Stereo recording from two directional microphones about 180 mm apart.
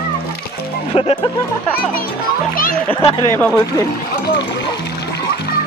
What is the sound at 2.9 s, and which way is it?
Speech, 30° left (ahead or behind).